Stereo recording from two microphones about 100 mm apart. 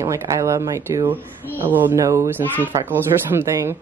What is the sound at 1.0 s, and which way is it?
Speech, 20° right (ahead or behind).